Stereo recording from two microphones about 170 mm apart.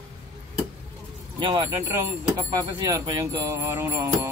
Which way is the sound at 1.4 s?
30° right (ahead or behind).